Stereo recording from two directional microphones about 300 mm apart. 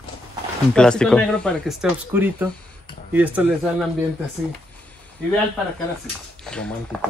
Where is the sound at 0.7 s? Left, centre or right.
Centre.